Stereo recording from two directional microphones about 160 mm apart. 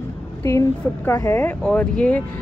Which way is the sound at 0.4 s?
15° left (ahead or behind).